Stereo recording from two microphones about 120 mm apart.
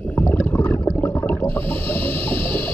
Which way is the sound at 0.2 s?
15° left (ahead or behind).